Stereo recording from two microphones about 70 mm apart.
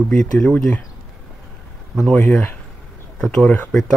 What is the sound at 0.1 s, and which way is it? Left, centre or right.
Speech, centre.